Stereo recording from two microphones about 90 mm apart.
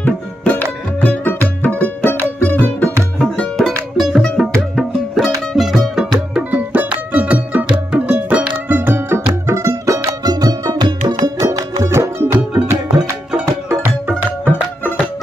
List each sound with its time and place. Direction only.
0.0 s music: 20° left (ahead or behind)
1.6 s music: 15° left (ahead or behind)
3.2 s music: 5° left (ahead or behind)
6.3 s music: 20° right (ahead or behind)
10.2 s music: 45° right (ahead or behind); by 12.4 s 30° right (ahead or behind)
13.7 s music: 25° right (ahead or behind)